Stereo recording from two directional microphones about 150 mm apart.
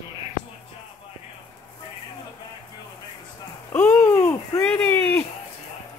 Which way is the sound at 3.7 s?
15° left (ahead or behind).